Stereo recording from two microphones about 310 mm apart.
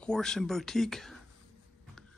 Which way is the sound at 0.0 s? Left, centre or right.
Centre.